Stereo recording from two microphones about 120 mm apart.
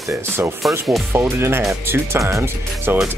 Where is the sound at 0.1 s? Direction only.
20° right (ahead or behind).